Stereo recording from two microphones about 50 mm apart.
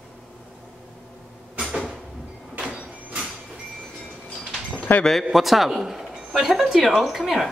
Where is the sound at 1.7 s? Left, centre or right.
Centre.